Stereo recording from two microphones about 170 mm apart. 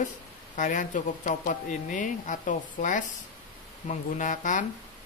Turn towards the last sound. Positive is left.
turn(degrees=50)  # may be behind; listen again after turning